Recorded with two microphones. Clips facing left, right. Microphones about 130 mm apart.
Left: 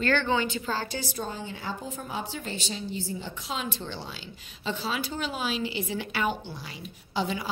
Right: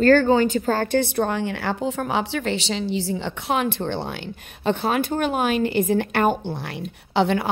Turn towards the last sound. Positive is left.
turn(degrees=-65)  # may be behind; listen again after turning